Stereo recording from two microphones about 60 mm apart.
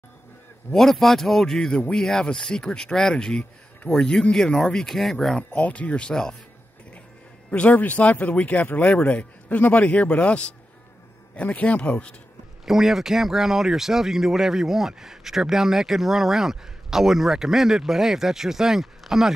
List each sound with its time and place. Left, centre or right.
0.7 s speech: centre
5.6 s speech: left
7.7 s speech: left
12.6 s speech: centre